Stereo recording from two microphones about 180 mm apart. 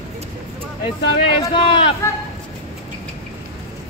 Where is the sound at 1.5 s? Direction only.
30° left (ahead or behind).